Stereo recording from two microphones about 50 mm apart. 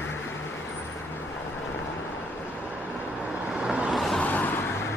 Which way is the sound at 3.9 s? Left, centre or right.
Centre.